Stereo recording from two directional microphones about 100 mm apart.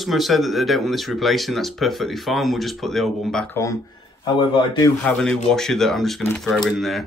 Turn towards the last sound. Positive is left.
turn(degrees=0)  # may be behind; listen again after turning